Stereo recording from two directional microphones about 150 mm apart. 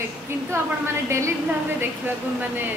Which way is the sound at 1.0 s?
20° right (ahead or behind).